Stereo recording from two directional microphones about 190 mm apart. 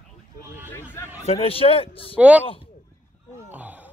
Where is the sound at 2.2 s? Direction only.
5° right (ahead or behind).